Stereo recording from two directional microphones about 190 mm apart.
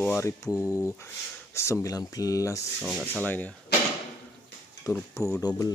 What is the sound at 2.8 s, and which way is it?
Speech, 5° right (ahead or behind).